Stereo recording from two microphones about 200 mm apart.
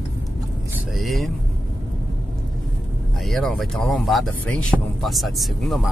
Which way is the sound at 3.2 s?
Centre (ahead or behind).